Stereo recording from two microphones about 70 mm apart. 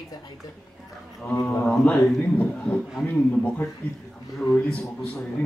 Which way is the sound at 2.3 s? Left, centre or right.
Centre.